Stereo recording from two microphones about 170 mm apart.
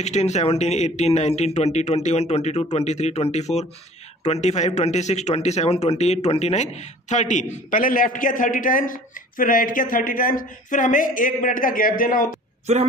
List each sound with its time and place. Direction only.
0.0 s a man's voice: 40° left (ahead or behind)